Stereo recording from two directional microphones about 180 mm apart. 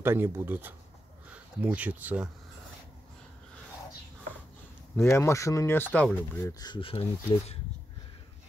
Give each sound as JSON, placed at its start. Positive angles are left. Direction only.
{"t": 0.0, "sound": "speech", "side_deg": -10}
{"t": 4.9, "sound": "speech", "side_deg": 15}